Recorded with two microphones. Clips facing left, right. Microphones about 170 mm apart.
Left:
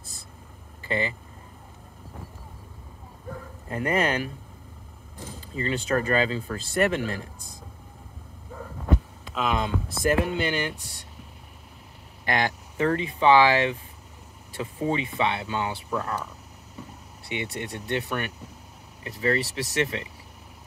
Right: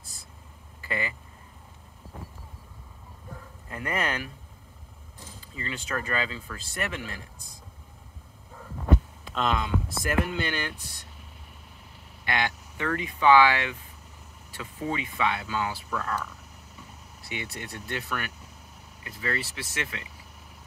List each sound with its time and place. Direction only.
0.8 s speech: 25° left (ahead or behind)
3.6 s speech: 30° left (ahead or behind)
5.6 s speech: 30° left (ahead or behind)
9.3 s speech: 5° left (ahead or behind)
9.6 s speech: 25° left (ahead or behind)
12.3 s speech: 40° left (ahead or behind); by 16.3 s 20° left (ahead or behind)
17.3 s speech: 25° left (ahead or behind)